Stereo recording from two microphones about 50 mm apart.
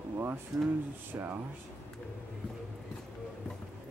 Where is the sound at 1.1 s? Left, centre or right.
Right.